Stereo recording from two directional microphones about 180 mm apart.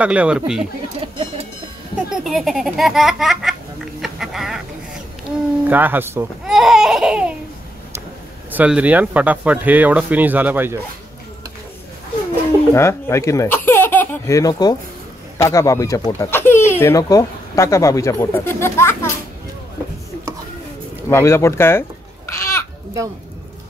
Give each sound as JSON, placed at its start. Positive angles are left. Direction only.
{"t": 0.0, "sound": "speech", "side_deg": -5}
{"t": 1.0, "sound": "a sound", "side_deg": -25}
{"t": 2.0, "sound": "a child's voice", "side_deg": -5}
{"t": 4.0, "sound": "duck", "side_deg": 0}
{"t": 5.7, "sound": "a child's voice", "side_deg": -10}
{"t": 8.5, "sound": "speech", "side_deg": -10}
{"t": 12.7, "sound": "speech", "side_deg": 15}
{"t": 21.1, "sound": "a sound", "side_deg": 15}